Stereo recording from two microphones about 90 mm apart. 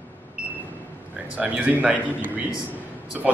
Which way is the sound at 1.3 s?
15° right (ahead or behind).